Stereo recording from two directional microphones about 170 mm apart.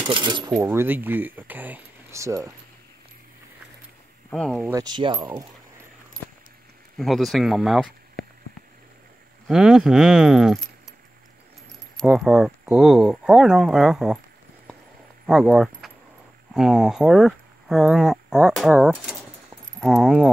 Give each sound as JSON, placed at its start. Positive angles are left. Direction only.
{"t": 0.0, "sound": "speech", "side_deg": -30}
{"t": 0.6, "sound": "speech", "side_deg": -10}
{"t": 4.3, "sound": "speech", "side_deg": 5}
{"t": 4.7, "sound": "speech", "side_deg": -25}
{"t": 7.0, "sound": "speech", "side_deg": 0}
{"t": 9.5, "sound": "speech", "side_deg": -5}
{"t": 12.0, "sound": "speech", "side_deg": 0}
{"t": 15.2, "sound": "speech", "side_deg": 0}